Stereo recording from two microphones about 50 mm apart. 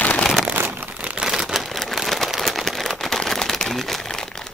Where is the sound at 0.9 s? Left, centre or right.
Right.